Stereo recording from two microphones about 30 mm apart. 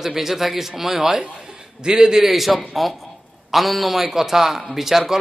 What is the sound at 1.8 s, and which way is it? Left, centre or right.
Speech, right.